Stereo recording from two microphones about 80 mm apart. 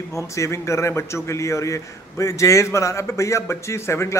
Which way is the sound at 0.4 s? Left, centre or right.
Left.